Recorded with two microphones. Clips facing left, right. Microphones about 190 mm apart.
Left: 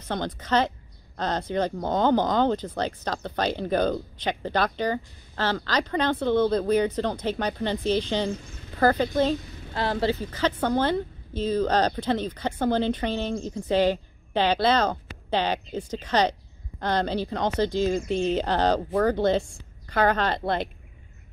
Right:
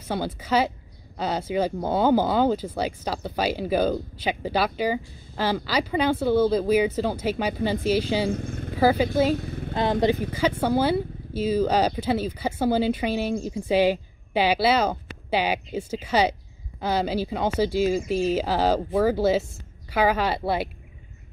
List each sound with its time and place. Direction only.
0.0 s speech: 10° right (ahead or behind)
8.3 s speech: 55° right (ahead or behind)
8.7 s speech: 5° right (ahead or behind)
9.4 s vehicle: 55° right (ahead or behind)
9.8 s speech: 20° right (ahead or behind)